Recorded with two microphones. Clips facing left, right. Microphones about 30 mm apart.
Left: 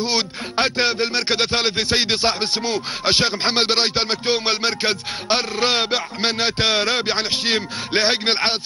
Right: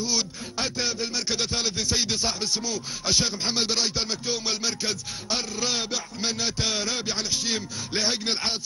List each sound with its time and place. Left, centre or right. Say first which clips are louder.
0.0 s speech: left 6 dB; left